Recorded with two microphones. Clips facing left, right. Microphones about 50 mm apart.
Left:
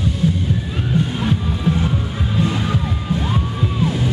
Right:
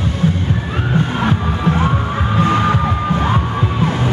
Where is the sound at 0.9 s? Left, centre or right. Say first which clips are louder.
Right 3 dB; right.